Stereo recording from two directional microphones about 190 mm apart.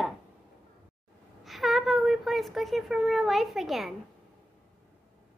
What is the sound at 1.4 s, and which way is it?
Speech, centre (ahead or behind).